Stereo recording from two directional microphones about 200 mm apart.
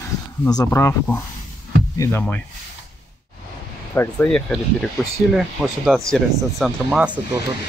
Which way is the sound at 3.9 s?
5° left (ahead or behind).